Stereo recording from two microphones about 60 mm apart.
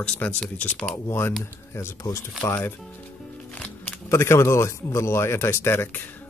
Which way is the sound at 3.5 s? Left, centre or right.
Left.